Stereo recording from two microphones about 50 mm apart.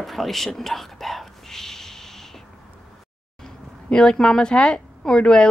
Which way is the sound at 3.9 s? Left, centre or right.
Centre.